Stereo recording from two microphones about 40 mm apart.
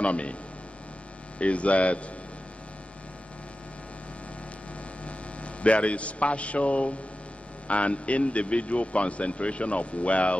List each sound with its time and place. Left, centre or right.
0.0 s a man's voice: left
1.4 s a man's voice: left
5.0 s mains hum: left
7.6 s a man's voice: left